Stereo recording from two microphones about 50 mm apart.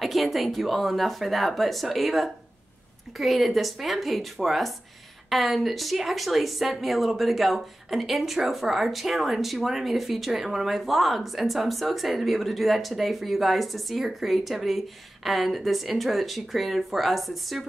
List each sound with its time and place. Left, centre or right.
0.0 s speech: centre